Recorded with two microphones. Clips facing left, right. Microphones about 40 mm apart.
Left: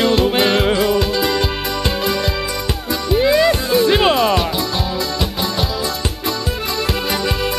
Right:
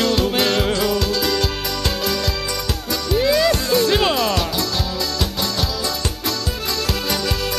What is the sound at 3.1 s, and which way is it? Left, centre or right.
Music, centre.